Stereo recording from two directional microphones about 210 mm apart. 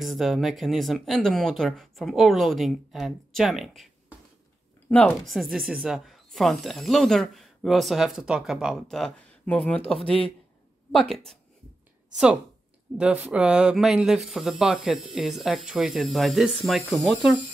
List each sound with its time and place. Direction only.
0.0 s speech: centre (ahead or behind)
12.9 s speech: 5° right (ahead or behind)